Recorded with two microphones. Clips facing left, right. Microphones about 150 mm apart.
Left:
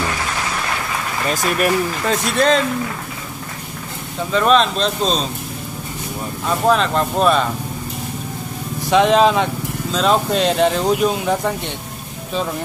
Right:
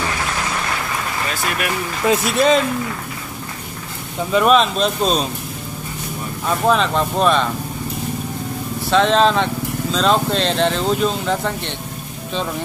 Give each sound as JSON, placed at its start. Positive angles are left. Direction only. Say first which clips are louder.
{"t": 1.3, "sound": "speech", "louder": "left 8 dB", "side_deg": 40}
{"t": 2.0, "sound": "speech", "louder": "right 3 dB", "side_deg": -5}
{"t": 4.3, "sound": "speech", "louder": "right 1 dB", "side_deg": -5}
{"t": 6.4, "sound": "speech", "louder": "left 1 dB", "side_deg": 0}
{"t": 8.8, "sound": "speech", "louder": "left 2 dB", "side_deg": 10}